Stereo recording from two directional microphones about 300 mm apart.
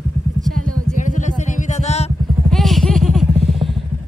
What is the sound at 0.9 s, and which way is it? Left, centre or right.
Vehicle, left.